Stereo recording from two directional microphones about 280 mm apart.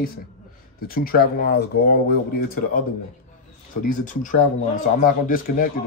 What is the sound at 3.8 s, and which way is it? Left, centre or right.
Speech, left.